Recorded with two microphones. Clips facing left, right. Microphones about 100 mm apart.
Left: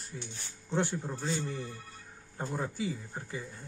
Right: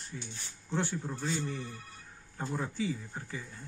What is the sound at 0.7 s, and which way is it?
Speech, 20° left (ahead or behind).